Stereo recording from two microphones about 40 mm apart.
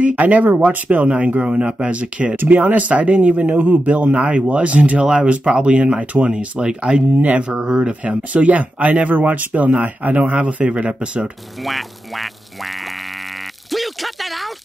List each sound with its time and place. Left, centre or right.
0.0 s speech: right
5.0 s speech: right
7.2 s speech: right
7.5 s speech: centre
8.0 s speech: right
11.6 s speech: centre
13.7 s a sound: centre